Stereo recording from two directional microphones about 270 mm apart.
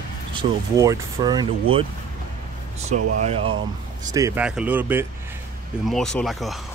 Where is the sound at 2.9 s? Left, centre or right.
Right.